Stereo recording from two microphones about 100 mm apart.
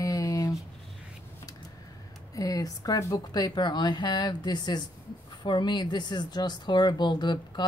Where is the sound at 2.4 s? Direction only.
35° left (ahead or behind).